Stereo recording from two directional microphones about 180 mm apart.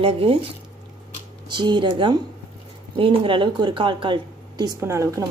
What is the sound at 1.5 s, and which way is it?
A woman's voice, 25° right (ahead or behind).